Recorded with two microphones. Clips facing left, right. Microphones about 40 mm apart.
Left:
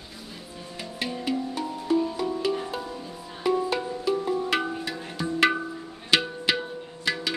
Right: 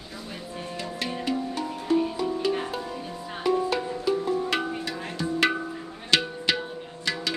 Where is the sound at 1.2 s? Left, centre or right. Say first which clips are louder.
Even; centre.